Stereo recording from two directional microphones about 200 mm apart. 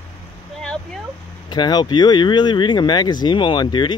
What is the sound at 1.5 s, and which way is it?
Speech, 20° left (ahead or behind).